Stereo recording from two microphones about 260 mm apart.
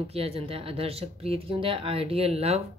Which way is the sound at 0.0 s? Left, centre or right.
Right.